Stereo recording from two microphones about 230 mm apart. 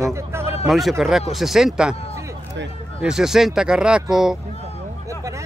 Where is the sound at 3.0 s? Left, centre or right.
Centre.